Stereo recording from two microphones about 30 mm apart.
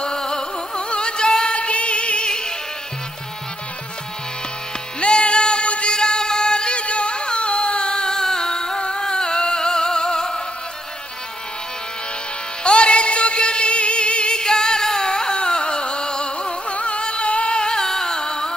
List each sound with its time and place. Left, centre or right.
0.0 s music: left
5.0 s music: left
9.0 s a sound: left
12.6 s music: left
17.7 s music: centre